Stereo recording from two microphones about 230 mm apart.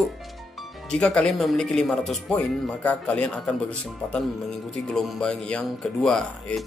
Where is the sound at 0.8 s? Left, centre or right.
Centre.